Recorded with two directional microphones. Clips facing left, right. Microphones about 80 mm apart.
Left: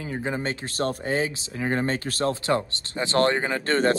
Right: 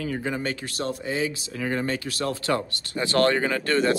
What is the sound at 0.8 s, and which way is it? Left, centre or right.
Speech, left.